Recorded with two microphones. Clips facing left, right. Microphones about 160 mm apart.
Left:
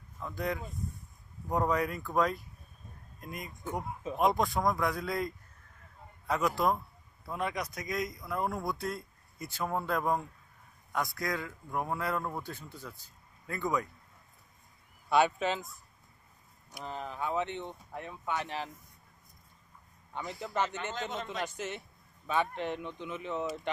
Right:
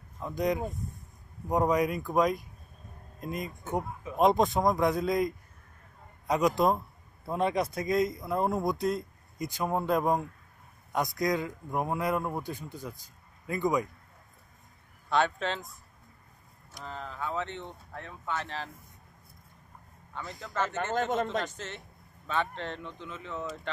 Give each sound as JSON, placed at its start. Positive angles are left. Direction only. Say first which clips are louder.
{"t": 0.2, "sound": "a man's voice", "louder": "right 6 dB", "side_deg": -20}
{"t": 15.0, "sound": "speech", "louder": "left 1 dB", "side_deg": 10}
{"t": 16.7, "sound": "speech", "louder": "left 1 dB", "side_deg": 15}
{"t": 20.2, "sound": "speech", "louder": "even", "side_deg": 15}
{"t": 20.7, "sound": "a man's voice", "louder": "right 8 dB", "side_deg": -50}
{"t": 21.5, "sound": "speech", "louder": "left 3 dB", "side_deg": 10}